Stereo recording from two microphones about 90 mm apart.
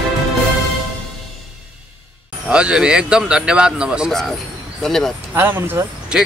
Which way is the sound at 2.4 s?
10° right (ahead or behind).